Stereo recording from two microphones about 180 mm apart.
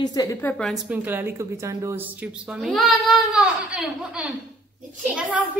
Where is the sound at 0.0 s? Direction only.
20° left (ahead or behind).